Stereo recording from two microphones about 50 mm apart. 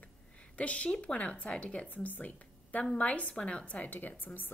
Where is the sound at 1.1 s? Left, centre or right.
Left.